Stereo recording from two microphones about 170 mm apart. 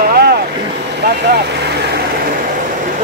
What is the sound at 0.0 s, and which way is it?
Boat, 65° right (ahead or behind).